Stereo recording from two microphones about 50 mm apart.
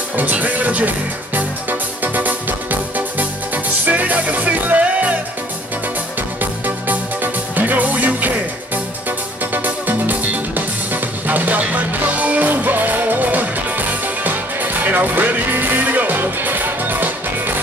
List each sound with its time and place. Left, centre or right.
0.1 s music: right
6.4 s music: right
9.5 s music: right